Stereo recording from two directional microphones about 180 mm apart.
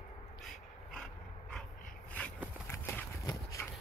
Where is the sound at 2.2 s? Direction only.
10° left (ahead or behind).